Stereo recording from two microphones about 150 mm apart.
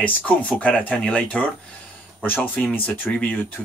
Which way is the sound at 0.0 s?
10° left (ahead or behind).